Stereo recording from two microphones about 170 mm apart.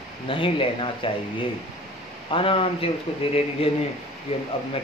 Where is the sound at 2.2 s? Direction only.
30° left (ahead or behind).